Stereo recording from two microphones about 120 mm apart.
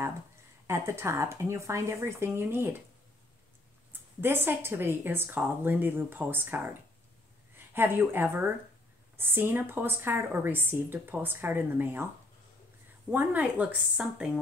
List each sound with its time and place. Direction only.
0.7 s speech: 20° right (ahead or behind)
4.2 s a woman's voice: 20° right (ahead or behind)
13.1 s a woman's voice: 15° right (ahead or behind)